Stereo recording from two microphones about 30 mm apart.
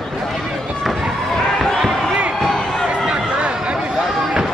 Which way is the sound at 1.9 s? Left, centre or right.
Centre.